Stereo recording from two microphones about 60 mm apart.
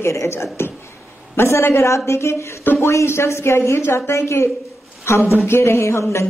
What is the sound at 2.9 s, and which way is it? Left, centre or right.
Speech, left.